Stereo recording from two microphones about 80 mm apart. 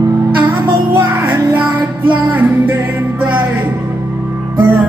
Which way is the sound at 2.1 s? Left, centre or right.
Right.